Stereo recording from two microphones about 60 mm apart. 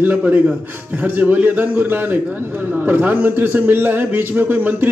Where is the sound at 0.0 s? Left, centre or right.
Right.